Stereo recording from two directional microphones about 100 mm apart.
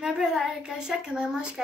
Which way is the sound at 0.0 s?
5° right (ahead or behind).